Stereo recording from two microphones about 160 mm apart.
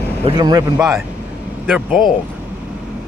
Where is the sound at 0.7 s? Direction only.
Centre (ahead or behind).